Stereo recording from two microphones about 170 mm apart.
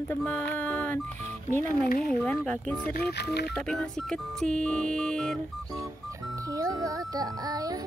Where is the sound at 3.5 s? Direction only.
5° left (ahead or behind).